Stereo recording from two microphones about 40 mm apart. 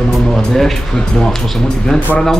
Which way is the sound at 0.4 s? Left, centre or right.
Centre.